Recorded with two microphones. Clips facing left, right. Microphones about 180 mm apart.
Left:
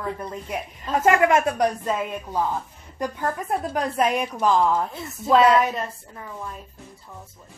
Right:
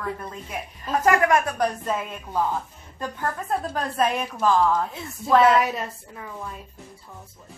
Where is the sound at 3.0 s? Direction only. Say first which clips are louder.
Left 3 dB; 15° left (ahead or behind).